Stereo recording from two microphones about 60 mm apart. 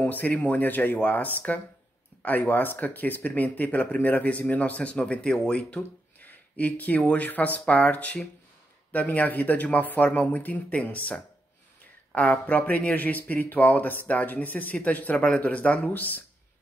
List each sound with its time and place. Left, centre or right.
0.0 s speech: left